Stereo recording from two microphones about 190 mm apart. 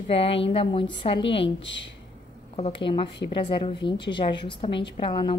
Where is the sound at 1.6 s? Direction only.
70° left (ahead or behind).